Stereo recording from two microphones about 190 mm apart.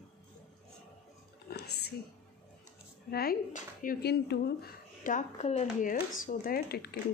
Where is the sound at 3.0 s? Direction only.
55° left (ahead or behind); by 5.9 s 35° left (ahead or behind).